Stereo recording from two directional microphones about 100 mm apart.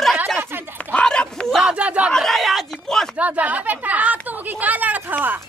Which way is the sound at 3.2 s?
15° right (ahead or behind).